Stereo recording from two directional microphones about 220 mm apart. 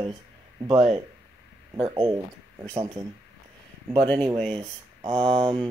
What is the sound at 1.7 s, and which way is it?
Speech, 20° right (ahead or behind).